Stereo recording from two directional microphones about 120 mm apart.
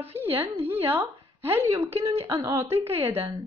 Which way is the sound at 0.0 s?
15° right (ahead or behind).